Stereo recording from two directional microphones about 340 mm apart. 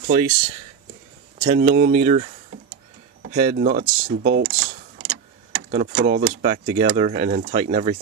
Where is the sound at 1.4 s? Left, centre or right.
Right.